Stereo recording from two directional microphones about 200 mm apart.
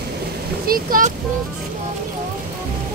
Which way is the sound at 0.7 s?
45° right (ahead or behind).